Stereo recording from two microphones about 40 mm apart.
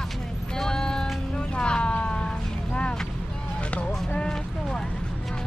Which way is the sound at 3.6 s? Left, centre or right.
Left.